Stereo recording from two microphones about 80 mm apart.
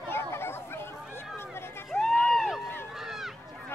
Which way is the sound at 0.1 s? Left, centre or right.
Left.